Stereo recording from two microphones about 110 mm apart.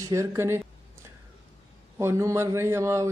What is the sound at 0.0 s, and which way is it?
Speech, 25° right (ahead or behind).